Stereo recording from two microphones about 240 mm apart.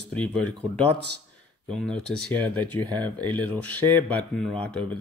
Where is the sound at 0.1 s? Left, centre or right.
Centre.